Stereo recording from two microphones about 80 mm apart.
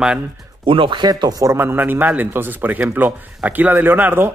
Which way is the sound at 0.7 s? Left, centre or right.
Right.